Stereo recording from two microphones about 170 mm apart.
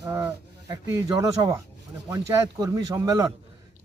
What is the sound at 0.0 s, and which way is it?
Speech, 15° right (ahead or behind).